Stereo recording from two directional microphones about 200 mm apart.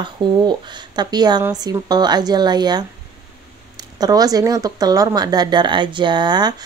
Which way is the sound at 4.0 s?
20° right (ahead or behind).